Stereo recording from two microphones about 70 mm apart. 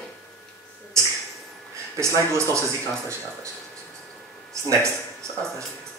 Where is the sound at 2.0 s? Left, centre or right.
Right.